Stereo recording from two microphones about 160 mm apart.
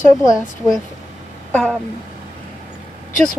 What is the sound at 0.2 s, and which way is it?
Speech, 20° left (ahead or behind).